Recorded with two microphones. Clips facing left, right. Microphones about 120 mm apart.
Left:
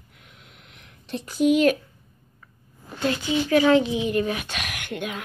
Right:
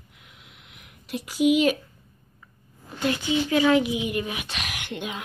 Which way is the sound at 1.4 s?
5° right (ahead or behind).